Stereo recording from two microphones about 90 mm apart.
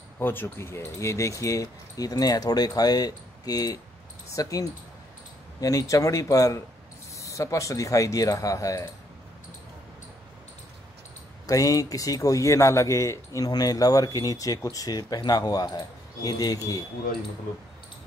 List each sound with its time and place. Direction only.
0.2 s speech: 25° left (ahead or behind); by 8.9 s 40° left (ahead or behind)
11.4 s speech: 40° left (ahead or behind)